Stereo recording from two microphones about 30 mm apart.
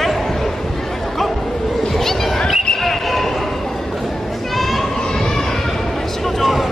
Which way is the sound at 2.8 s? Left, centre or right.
Centre.